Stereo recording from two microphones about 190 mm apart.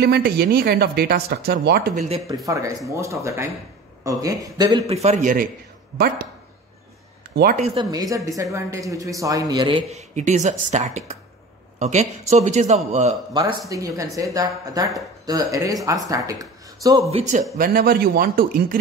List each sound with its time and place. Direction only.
0.0 s speech: 55° right (ahead or behind)
2.0 s a man's voice: 35° right (ahead or behind)
2.2 s a man's voice: 15° right (ahead or behind)
5.0 s a man's voice: 40° right (ahead or behind)
7.5 s a man's voice: 35° right (ahead or behind)
7.8 s a man's voice: 20° right (ahead or behind); by 13.1 s 35° right (ahead or behind)
13.3 s speech: 15° right (ahead or behind)
17.1 s a man's voice: 35° right (ahead or behind)
17.6 s a man's voice: 50° right (ahead or behind)